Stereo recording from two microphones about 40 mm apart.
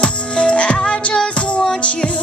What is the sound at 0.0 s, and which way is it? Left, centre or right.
Music, left.